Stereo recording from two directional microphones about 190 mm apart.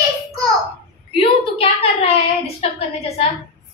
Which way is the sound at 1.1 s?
30° left (ahead or behind).